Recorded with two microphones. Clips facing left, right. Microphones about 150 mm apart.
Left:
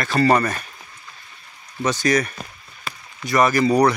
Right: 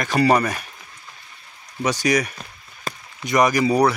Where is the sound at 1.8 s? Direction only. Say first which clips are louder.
Left 1 dB; 10° right (ahead or behind).